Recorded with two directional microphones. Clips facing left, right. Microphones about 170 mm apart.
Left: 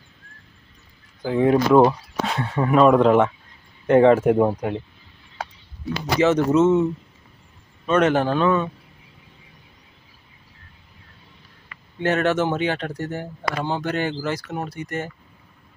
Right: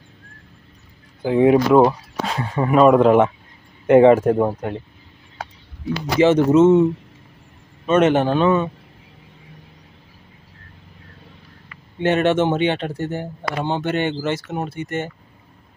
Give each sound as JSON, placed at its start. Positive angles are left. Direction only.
{"t": 1.2, "sound": "speech", "side_deg": -10}
{"t": 4.2, "sound": "speech", "side_deg": 5}
{"t": 4.5, "sound": "speech", "side_deg": -5}
{"t": 6.2, "sound": "speech", "side_deg": -25}
{"t": 12.0, "sound": "speech", "side_deg": -25}